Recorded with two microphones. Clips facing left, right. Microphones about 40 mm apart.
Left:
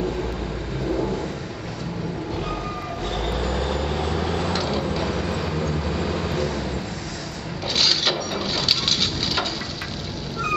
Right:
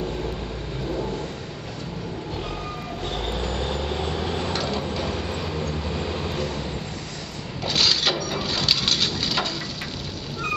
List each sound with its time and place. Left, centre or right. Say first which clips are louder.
3.5 s vehicle: left 2 dB; left
4.6 s tick-tock: left 2 dB; centre
5.1 s vehicle: left 3 dB; left
7.6 s coin: even; centre